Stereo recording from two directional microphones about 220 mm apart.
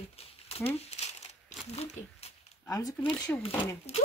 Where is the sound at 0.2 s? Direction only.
25° left (ahead or behind).